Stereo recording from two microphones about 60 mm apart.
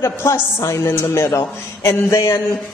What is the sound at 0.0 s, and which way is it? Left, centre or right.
A woman's voice, left.